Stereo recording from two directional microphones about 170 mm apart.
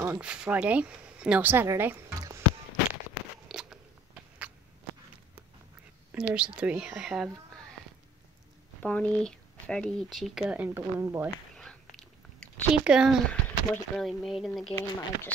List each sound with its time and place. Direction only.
0.0 s speech: 10° right (ahead or behind)
3.4 s biting: centre (ahead or behind)
6.1 s speech: 5° right (ahead or behind)
8.8 s speech: 5° left (ahead or behind); by 11.2 s 15° right (ahead or behind)
11.2 s chewing: 5° left (ahead or behind)
13.3 s speech: 5° left (ahead or behind)
14.8 s speech: 15° left (ahead or behind)